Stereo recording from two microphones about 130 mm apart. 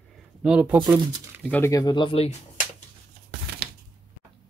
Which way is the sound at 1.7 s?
30° left (ahead or behind).